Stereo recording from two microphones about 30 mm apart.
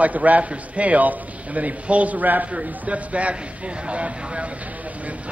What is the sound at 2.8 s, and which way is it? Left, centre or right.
Speech, right.